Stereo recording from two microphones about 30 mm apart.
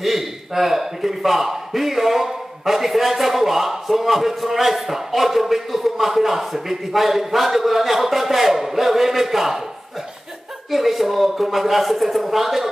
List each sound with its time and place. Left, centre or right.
0.0 s a man's voice: centre
10.7 s speech: centre